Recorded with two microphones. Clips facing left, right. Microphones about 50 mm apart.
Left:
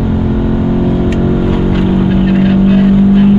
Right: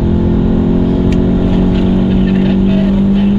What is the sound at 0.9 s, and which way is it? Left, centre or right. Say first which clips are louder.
Vehicle: even; centre.